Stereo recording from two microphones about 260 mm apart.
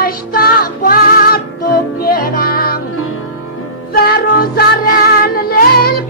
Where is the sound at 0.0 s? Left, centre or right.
Left.